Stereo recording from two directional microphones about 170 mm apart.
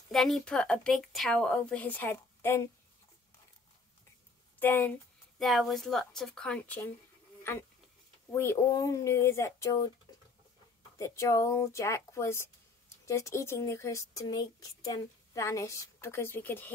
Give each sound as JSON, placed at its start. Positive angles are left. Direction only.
{"t": 0.1, "sound": "speech", "side_deg": 0}
{"t": 4.6, "sound": "speech", "side_deg": 10}
{"t": 8.3, "sound": "speech", "side_deg": 15}
{"t": 10.1, "sound": "a sound", "side_deg": 20}
{"t": 11.0, "sound": "speech", "side_deg": 20}